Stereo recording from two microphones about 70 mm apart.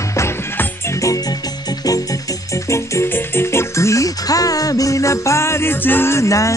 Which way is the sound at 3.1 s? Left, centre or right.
Left.